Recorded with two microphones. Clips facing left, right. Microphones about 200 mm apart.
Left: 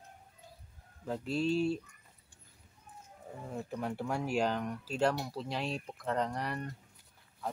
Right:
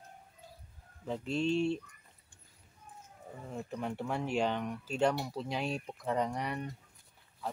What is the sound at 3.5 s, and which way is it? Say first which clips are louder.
Speech: even; 5° left (ahead or behind).